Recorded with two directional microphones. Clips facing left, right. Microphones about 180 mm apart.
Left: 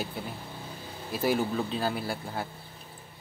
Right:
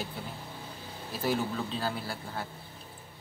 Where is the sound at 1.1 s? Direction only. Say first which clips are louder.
Left 4 dB; 10° left (ahead or behind).